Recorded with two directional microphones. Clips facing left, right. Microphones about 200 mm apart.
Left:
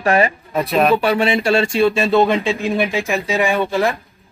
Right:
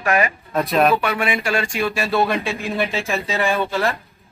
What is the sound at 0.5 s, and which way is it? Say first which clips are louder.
Speech: even; centre (ahead or behind).